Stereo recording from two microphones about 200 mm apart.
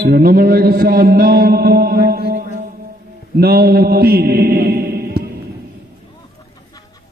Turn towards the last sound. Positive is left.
turn(degrees=-50)  # may be behind; listen again after turning